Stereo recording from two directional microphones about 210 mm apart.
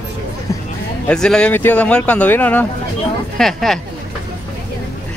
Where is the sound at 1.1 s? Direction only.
5° left (ahead or behind).